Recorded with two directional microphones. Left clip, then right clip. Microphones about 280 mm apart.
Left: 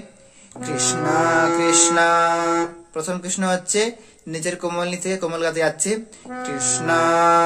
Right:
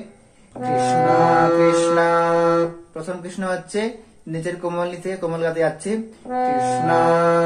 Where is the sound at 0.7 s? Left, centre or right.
Centre.